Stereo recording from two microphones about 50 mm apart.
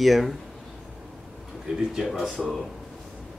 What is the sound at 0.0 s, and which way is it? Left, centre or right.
Speech, centre.